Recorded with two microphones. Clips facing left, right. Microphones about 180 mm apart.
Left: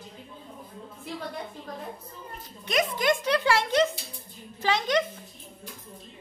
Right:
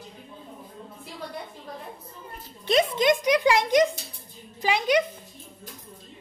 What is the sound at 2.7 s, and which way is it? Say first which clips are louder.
A child's voice: right 4 dB; 25° right (ahead or behind).